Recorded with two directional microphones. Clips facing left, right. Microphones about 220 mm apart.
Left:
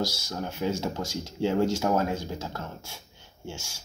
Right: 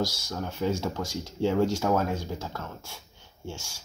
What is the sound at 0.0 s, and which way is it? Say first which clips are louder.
Speech: even; 5° left (ahead or behind).